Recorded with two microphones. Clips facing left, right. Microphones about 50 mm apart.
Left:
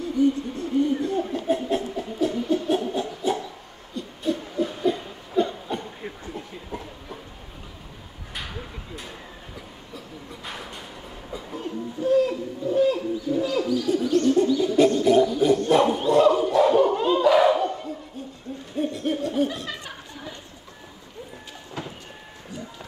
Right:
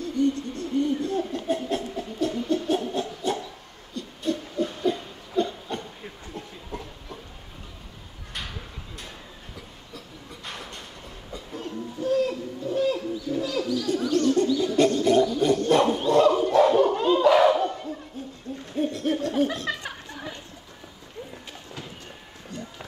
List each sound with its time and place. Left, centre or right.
0.0 s chuckle: centre
3.9 s hoot: centre
6.2 s a sound: centre
8.4 s a sound: centre
11.3 s hoot: centre
14.6 s bird: centre
15.3 s a sound: centre
15.7 s dog: centre
18.8 s hoot: centre